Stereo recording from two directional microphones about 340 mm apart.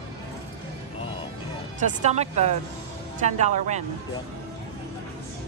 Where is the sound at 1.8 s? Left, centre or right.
Centre.